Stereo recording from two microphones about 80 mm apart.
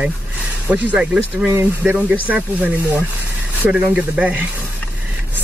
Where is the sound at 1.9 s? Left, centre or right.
Centre.